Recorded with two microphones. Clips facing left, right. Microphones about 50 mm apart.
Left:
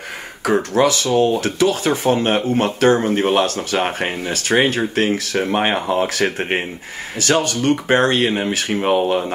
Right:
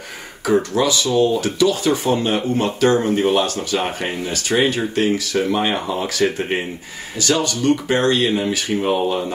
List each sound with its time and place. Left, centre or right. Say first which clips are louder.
0.5 s speech: left 1 dB; left